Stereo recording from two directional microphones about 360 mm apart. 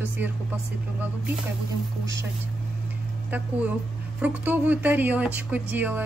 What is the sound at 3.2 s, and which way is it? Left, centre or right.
A woman's voice, centre.